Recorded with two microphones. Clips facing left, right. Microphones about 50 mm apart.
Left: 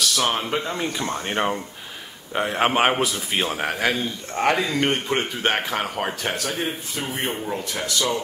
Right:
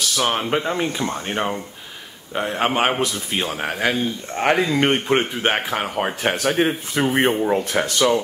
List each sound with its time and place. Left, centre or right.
0.0 s speech: centre
0.5 s speech: right
1.2 s a man's voice: centre
4.4 s speech: right
5.4 s speech: centre
6.4 s speech: right
7.1 s speech: right
7.4 s speech: right